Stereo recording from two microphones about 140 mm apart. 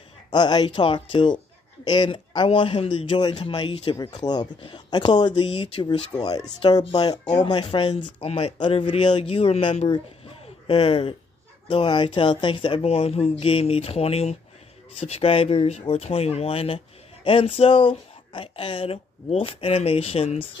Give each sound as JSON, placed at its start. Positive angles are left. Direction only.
{"t": 0.3, "sound": "a man's voice", "side_deg": 30}
{"t": 7.9, "sound": "speech", "side_deg": 50}
{"t": 8.5, "sound": "a man's voice", "side_deg": 35}
{"t": 9.8, "sound": "a sound", "side_deg": 45}
{"t": 11.7, "sound": "a man's voice", "side_deg": 35}